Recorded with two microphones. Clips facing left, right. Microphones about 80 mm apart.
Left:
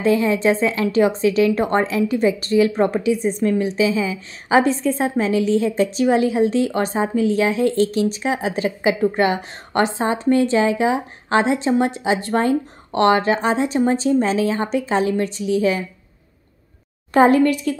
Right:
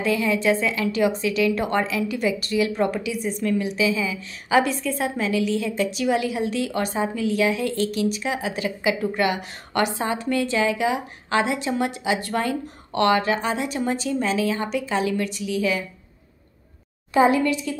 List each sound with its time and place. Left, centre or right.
0.0 s a woman's voice: left
17.1 s speech: left